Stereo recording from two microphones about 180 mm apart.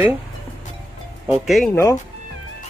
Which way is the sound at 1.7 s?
15° left (ahead or behind).